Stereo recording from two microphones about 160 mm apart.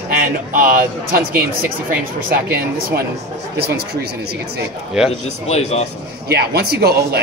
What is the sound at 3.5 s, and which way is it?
Speech, 80° right.